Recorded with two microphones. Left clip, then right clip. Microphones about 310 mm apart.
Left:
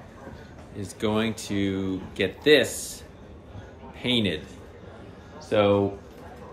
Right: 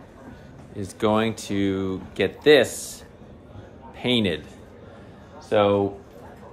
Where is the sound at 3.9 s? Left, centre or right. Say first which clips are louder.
Right 2 dB; centre.